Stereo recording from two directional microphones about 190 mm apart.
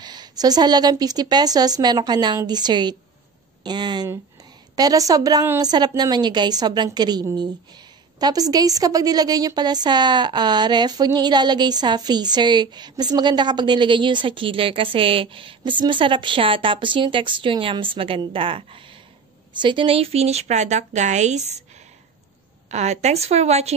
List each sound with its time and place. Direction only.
0.0 s a woman's voice: 20° right (ahead or behind)
22.7 s a woman's voice: 35° right (ahead or behind)